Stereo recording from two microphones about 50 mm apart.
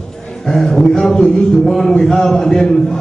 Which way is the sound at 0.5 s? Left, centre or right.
Centre.